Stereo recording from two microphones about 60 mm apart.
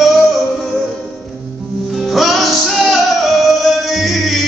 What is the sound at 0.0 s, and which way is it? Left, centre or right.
Music, centre.